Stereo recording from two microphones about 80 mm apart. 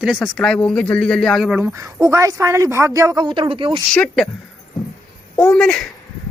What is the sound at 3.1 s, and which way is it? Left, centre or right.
Speech, right.